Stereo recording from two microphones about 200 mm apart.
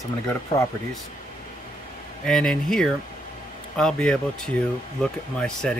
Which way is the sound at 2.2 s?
5° left (ahead or behind).